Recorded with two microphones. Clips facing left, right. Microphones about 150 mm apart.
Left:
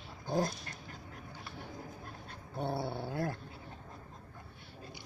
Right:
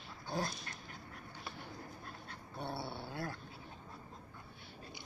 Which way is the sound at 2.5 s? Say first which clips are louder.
Left 7 dB; 50° left (ahead or behind).